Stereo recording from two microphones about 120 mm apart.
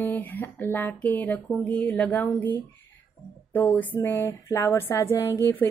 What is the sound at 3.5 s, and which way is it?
A woman's voice, 15° left (ahead or behind).